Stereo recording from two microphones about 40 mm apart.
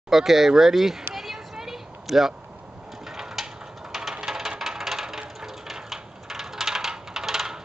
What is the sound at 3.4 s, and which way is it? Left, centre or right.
Ratchet, centre.